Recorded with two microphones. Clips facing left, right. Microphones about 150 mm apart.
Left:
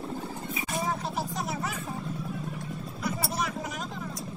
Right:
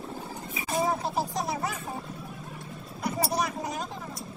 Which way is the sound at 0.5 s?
35° right (ahead or behind).